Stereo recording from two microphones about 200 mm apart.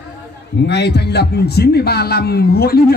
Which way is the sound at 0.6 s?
55° left (ahead or behind).